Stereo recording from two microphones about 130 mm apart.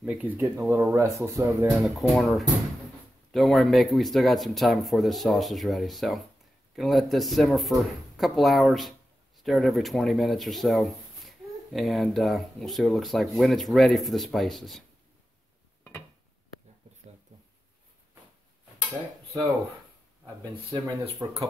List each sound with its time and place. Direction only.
0.0 s speech: 10° right (ahead or behind)
1.8 s speech: centre (ahead or behind)
20.7 s speech: 30° right (ahead or behind)